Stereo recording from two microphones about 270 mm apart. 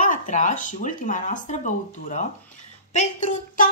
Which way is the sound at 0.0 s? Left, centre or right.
Left.